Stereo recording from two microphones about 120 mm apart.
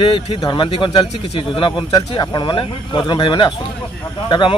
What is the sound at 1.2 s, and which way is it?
Speech, 60° left (ahead or behind).